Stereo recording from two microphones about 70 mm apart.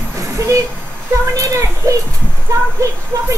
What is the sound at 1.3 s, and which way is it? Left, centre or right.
Speech, right.